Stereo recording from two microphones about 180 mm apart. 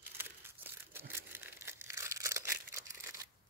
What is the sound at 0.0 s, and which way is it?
Crumpling, 10° right (ahead or behind).